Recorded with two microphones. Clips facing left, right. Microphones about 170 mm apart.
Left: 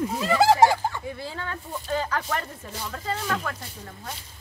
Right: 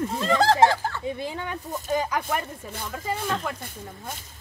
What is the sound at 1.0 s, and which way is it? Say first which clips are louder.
Speech: right 4 dB; 20° right (ahead or behind).